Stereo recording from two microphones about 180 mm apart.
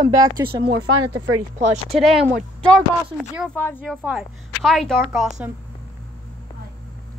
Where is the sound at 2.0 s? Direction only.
Centre (ahead or behind).